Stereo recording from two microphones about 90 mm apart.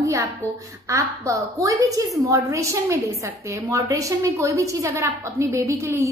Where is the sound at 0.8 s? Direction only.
35° right (ahead or behind).